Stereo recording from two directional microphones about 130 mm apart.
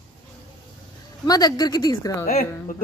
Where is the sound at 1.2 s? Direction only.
30° left (ahead or behind).